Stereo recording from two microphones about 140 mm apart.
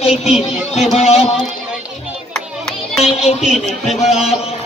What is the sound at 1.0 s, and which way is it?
Speech, 45° left (ahead or behind).